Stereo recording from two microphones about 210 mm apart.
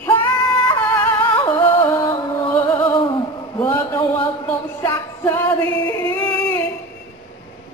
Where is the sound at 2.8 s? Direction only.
25° left (ahead or behind).